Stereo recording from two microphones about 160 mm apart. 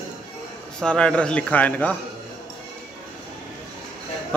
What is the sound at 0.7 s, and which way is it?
A man's voice, 5° left (ahead or behind).